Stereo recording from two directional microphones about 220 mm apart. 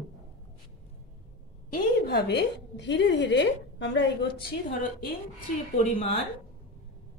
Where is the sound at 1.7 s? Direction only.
45° left (ahead or behind).